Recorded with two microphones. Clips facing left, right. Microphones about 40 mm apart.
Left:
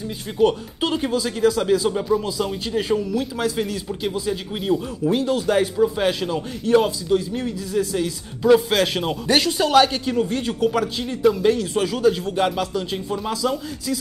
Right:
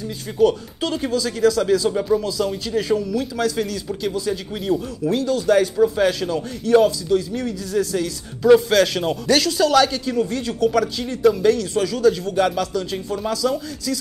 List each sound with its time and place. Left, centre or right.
0.4 s speech: left
5.1 s speech: left
5.8 s speech: centre